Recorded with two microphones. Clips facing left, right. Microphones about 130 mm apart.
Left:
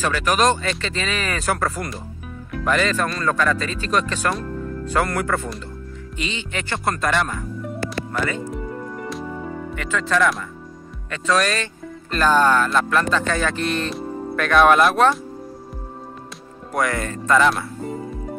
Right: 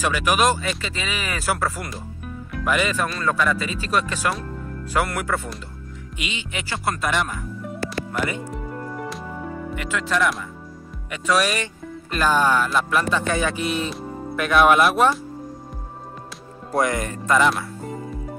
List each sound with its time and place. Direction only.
0.0 s speech: 10° right (ahead or behind)
7.8 s music: 15° right (ahead or behind)
8.9 s music: 5° right (ahead or behind)
9.8 s speech: 5° right (ahead or behind)
16.7 s speech: 20° right (ahead or behind)